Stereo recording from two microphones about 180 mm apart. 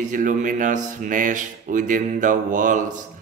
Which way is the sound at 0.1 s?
45° right (ahead or behind).